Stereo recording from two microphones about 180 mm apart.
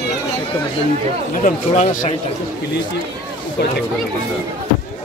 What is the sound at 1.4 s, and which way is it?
Speech, 40° left (ahead or behind).